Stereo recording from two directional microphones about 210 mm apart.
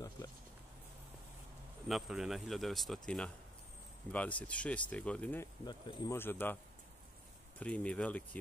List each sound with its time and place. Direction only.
1.9 s speech: centre (ahead or behind)
7.6 s speech: 5° left (ahead or behind)